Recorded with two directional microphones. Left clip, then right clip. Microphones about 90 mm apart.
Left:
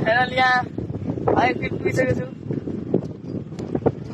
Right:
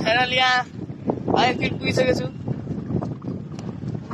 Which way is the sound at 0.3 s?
5° right (ahead or behind).